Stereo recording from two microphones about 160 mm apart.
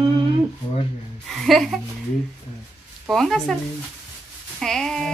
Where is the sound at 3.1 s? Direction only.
Centre (ahead or behind).